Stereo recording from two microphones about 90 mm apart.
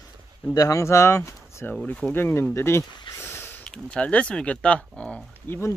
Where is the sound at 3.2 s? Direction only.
25° left (ahead or behind).